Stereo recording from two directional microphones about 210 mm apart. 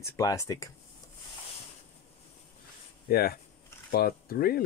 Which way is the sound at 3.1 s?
45° left (ahead or behind).